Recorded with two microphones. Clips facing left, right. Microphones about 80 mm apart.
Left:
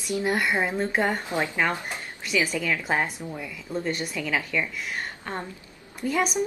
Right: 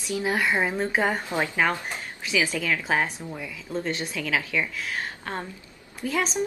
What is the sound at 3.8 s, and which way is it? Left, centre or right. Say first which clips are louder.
Speech: left 1 dB; centre.